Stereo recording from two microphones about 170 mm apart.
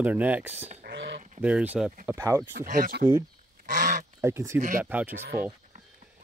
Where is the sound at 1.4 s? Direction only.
10° right (ahead or behind).